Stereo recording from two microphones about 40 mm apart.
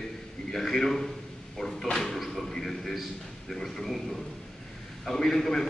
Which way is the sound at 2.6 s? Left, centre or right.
Centre.